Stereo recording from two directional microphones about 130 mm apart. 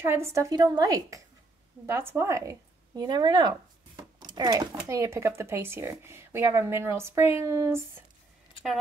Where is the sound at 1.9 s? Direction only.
20° right (ahead or behind).